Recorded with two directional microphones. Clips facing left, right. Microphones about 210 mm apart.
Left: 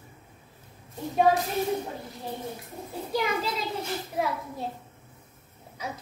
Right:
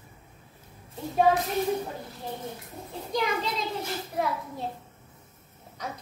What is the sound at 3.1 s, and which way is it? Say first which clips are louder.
Speech: even; 5° left (ahead or behind).